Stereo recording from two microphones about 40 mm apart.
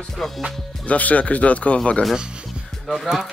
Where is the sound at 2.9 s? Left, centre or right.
Centre.